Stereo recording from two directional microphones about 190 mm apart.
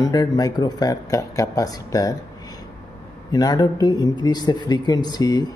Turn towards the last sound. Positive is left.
turn(degrees=20)  # may be behind; listen again after turning